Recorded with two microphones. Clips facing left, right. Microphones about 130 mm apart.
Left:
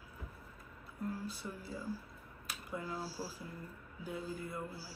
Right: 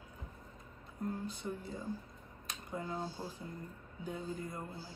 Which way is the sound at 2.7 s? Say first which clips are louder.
Right 1 dB; 20° right (ahead or behind).